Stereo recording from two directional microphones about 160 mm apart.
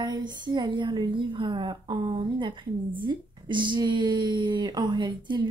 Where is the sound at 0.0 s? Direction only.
25° right (ahead or behind).